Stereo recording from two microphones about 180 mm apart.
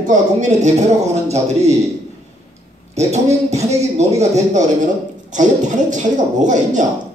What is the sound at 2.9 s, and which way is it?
Speech, 35° right (ahead or behind).